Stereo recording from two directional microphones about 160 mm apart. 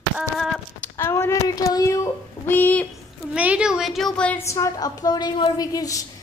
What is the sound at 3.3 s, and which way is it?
A woman's voice, 5° right (ahead or behind).